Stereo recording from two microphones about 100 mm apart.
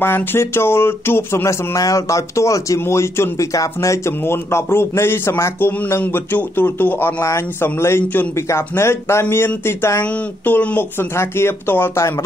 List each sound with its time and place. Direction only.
0.0 s speech: 20° left (ahead or behind)